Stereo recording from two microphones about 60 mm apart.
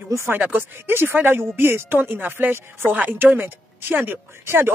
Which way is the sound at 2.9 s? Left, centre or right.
Right.